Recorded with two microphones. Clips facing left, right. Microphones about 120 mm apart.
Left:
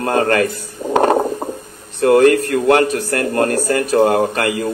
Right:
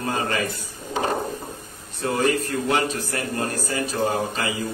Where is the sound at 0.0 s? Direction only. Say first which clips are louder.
Left 10 dB; 70° left (ahead or behind).